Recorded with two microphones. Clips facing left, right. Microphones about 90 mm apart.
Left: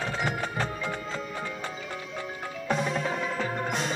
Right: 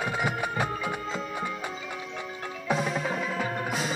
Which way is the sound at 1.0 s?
Centre (ahead or behind).